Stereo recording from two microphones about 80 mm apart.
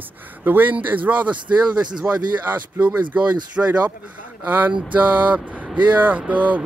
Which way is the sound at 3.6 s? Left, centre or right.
Centre.